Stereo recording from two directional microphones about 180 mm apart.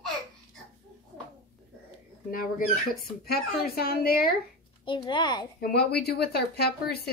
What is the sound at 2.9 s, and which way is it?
Speech, 60° left (ahead or behind).